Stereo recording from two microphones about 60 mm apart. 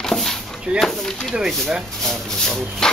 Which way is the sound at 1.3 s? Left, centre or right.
Centre.